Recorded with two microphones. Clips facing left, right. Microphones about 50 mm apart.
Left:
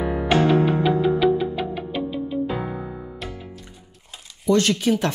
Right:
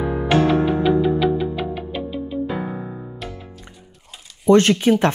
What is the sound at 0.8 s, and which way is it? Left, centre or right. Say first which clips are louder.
Music: right 1 dB; centre.